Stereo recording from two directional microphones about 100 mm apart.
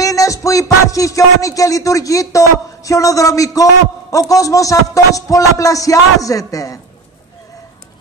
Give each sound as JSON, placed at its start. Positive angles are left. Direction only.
{"t": 0.0, "sound": "music", "side_deg": 35}